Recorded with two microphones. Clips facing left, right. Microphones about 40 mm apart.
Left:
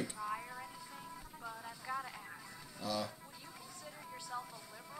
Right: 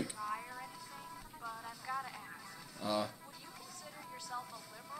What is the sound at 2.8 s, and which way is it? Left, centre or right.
Speech, right.